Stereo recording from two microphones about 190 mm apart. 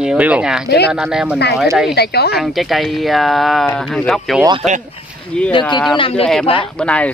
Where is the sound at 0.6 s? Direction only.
60° left (ahead or behind).